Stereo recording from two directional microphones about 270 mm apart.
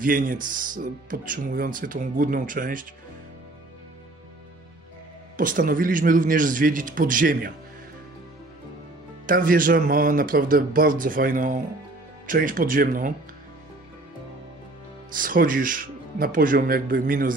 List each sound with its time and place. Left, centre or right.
0.0 s speech: right
5.4 s a man's voice: right
9.2 s speech: right
15.1 s speech: right